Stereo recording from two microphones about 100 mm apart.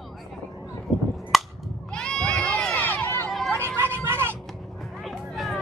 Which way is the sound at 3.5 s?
20° right (ahead or behind).